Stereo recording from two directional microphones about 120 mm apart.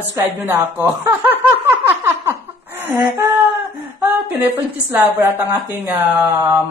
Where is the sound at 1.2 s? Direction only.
15° right (ahead or behind).